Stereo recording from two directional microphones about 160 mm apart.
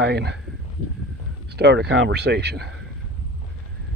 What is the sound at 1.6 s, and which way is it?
Speech, 90° right.